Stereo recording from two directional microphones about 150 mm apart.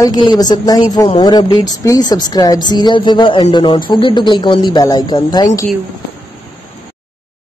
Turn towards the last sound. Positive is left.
turn(degrees=25)  # may be behind; listen again after turning